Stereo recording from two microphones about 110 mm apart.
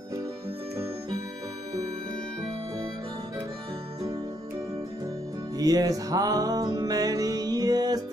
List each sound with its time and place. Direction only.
5.6 s music: 35° right (ahead or behind)